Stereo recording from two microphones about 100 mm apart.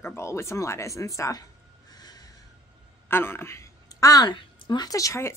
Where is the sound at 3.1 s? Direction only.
25° left (ahead or behind).